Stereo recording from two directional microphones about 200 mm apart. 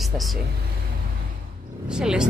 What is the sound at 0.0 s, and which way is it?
Speech, centre (ahead or behind).